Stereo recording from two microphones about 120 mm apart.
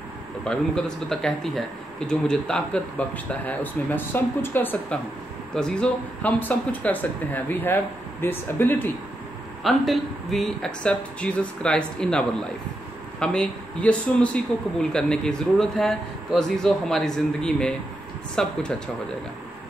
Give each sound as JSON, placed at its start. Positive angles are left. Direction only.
{"t": 0.5, "sound": "speech", "side_deg": 5}
{"t": 5.5, "sound": "speech", "side_deg": 5}
{"t": 9.6, "sound": "speech", "side_deg": 0}